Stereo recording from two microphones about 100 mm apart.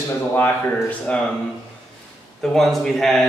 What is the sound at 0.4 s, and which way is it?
Speech, 15° left (ahead or behind).